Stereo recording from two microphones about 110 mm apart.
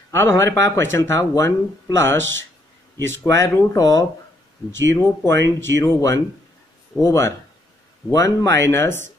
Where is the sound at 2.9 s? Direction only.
25° left (ahead or behind).